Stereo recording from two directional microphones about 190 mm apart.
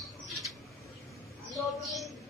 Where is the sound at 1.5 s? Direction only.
Centre (ahead or behind).